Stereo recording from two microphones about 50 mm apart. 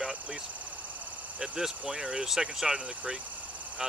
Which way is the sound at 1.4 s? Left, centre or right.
Centre.